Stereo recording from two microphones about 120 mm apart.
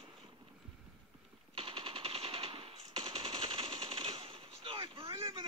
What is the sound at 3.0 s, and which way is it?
Machine gun, 40° right (ahead or behind).